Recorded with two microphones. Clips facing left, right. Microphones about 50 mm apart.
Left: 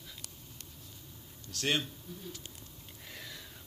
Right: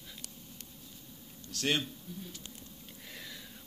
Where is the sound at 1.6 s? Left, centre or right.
Centre.